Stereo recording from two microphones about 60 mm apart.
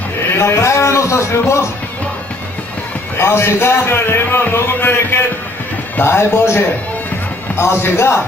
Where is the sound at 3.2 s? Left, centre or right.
Left.